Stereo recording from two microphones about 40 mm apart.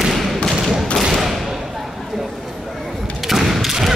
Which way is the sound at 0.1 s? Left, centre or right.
Centre.